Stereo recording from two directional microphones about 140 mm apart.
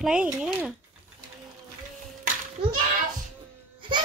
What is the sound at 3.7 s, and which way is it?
Music, 35° right (ahead or behind).